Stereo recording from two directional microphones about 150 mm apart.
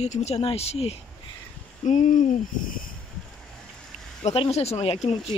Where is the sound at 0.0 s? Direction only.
45° left (ahead or behind).